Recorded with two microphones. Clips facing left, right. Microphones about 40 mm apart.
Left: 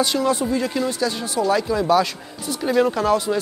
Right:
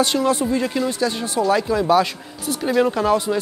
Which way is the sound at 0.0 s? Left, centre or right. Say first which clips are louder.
Right 1 dB; right.